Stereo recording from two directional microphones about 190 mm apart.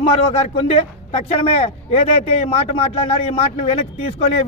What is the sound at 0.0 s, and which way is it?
Speech, 30° left (ahead or behind).